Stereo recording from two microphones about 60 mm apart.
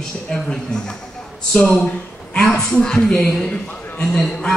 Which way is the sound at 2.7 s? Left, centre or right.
Centre.